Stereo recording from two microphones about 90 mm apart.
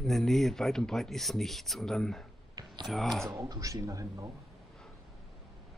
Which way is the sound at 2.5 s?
50° right (ahead or behind).